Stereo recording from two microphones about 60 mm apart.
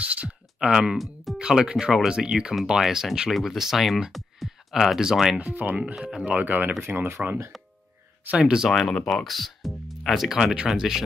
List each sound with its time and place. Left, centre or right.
0.0 s a sound: right
0.9 s speech: centre
1.4 s speech: centre
5.4 s speech: right
5.9 s speech: centre
6.2 s speech: right
8.3 s speech: centre
8.6 s speech: centre